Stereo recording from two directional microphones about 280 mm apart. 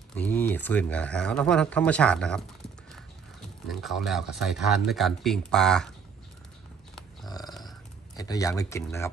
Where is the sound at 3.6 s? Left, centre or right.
Centre.